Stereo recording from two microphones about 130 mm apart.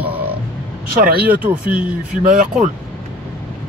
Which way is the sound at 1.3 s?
10° right (ahead or behind).